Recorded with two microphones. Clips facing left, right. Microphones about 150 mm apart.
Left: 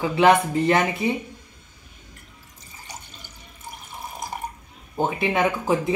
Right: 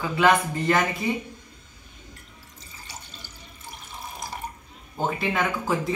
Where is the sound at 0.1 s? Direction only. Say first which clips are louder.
Left 3 dB; 25° left (ahead or behind).